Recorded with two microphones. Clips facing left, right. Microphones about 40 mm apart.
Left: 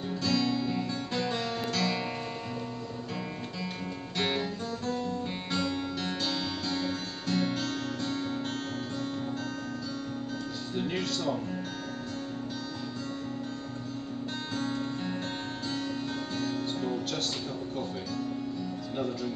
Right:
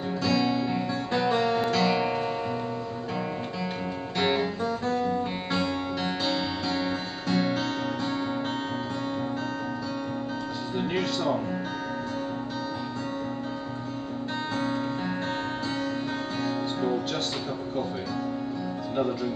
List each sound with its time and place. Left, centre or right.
0.2 s guitar: centre
4.2 s music: centre
10.8 s music: centre
14.6 s music: centre
16.3 s music: centre